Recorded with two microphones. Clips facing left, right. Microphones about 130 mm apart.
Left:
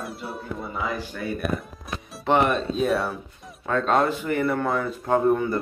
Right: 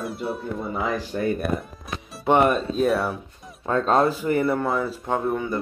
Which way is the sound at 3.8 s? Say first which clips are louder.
Right 2 dB; 35° right (ahead or behind).